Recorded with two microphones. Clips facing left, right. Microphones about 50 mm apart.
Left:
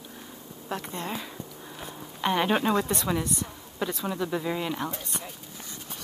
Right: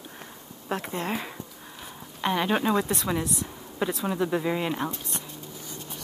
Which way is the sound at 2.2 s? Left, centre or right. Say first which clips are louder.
Even; centre.